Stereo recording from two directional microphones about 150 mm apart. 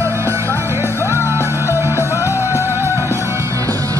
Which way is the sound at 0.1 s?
20° right (ahead or behind).